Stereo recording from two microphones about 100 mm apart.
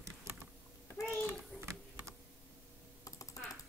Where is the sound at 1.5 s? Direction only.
5° right (ahead or behind).